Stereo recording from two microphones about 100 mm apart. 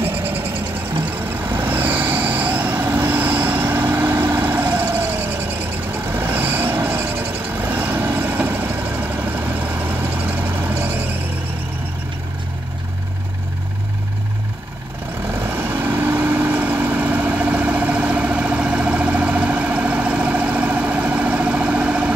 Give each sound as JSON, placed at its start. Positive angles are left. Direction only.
{"t": 0.0, "sound": "a sound", "side_deg": -15}
{"t": 1.3, "sound": "vehicle", "side_deg": -20}
{"t": 15.3, "sound": "vehicle", "side_deg": -20}